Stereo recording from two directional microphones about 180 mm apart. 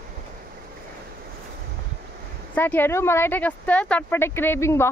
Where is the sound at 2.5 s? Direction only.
10° left (ahead or behind).